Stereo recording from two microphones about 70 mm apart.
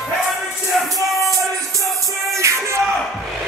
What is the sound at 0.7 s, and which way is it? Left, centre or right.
Music, centre.